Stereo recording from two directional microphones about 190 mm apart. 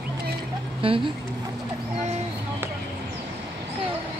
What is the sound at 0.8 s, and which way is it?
Speech, 30° right (ahead or behind).